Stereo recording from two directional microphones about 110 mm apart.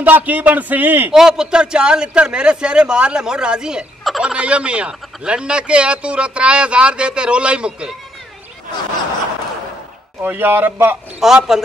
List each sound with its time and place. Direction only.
0.0 s speech: 15° right (ahead or behind)
1.1 s speech: 5° right (ahead or behind)
10.2 s speech: 20° right (ahead or behind)
11.1 s a man's voice: 5° right (ahead or behind)